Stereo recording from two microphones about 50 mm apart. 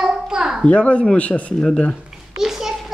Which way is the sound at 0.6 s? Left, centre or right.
Left.